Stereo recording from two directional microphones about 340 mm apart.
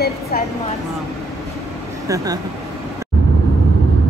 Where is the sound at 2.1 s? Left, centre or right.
Centre.